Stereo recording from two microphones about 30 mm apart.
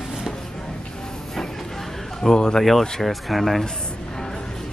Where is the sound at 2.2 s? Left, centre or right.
Left.